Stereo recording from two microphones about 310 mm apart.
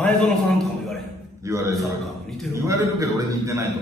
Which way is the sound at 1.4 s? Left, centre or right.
Centre.